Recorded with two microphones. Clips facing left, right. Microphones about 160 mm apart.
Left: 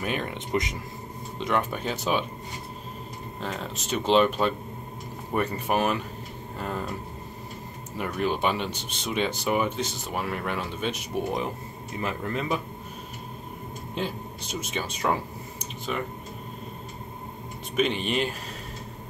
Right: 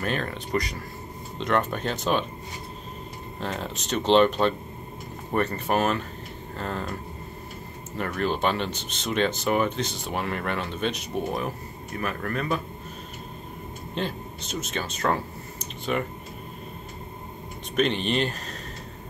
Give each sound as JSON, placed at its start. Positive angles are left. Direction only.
{"t": 0.0, "sound": "speech", "side_deg": 15}
{"t": 3.3, "sound": "speech", "side_deg": 0}
{"t": 8.0, "sound": "speech", "side_deg": 10}
{"t": 13.9, "sound": "speech", "side_deg": 10}
{"t": 17.7, "sound": "speech", "side_deg": 5}